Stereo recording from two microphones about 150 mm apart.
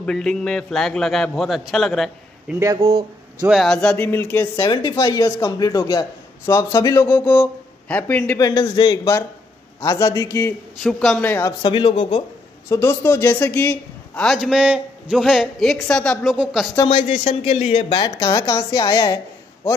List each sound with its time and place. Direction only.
0.0 s a man's voice: 5° left (ahead or behind)
2.8 s speech: 40° right (ahead or behind)
3.4 s a man's voice: centre (ahead or behind)
4.6 s a man's voice: 30° left (ahead or behind); by 8.4 s 10° left (ahead or behind)
8.4 s a man's voice: 25° left (ahead or behind)
10.8 s a man's voice: centre (ahead or behind)
11.2 s a man's voice: 15° left (ahead or behind)
11.6 s speech: 35° left (ahead or behind)
12.6 s a man's voice: 20° left (ahead or behind)
14.3 s a man's voice: 5° right (ahead or behind)
16.9 s speech: 45° left (ahead or behind)
18.0 s a man's voice: 25° left (ahead or behind)